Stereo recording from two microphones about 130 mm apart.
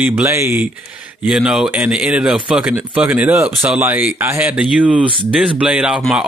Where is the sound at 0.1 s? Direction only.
20° right (ahead or behind).